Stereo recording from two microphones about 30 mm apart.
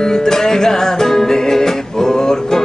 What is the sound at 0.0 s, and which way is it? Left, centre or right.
Music, centre.